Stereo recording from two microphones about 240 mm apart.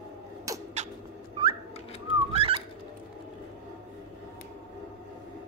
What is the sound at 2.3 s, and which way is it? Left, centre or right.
Bird, right.